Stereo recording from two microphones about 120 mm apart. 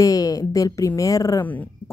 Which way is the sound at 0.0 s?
30° left (ahead or behind).